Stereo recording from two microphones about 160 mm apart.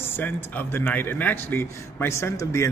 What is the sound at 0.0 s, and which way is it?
A man's voice, 10° left (ahead or behind).